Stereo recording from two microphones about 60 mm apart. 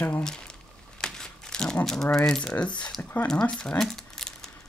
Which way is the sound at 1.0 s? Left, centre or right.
Centre.